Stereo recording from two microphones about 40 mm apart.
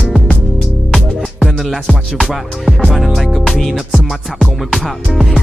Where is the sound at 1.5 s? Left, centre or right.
Centre.